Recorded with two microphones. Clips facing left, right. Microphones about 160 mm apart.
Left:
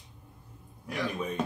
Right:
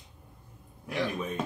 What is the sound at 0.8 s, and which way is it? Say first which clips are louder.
Speech: right 1 dB; centre (ahead or behind).